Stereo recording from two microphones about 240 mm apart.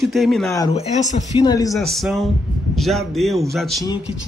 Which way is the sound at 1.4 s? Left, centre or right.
Centre.